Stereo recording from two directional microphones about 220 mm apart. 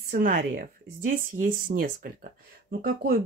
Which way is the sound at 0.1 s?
40° right (ahead or behind).